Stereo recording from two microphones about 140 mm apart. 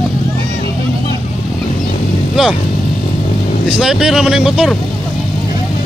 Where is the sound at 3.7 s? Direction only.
5° right (ahead or behind).